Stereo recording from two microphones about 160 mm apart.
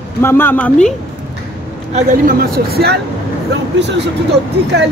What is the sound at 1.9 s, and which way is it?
Speech, 60° right (ahead or behind).